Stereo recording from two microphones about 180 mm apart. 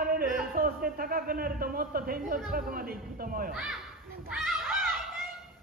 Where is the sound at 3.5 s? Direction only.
5° right (ahead or behind).